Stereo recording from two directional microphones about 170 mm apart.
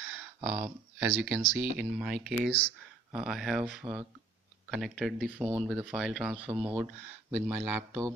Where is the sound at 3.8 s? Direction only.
35° right (ahead or behind).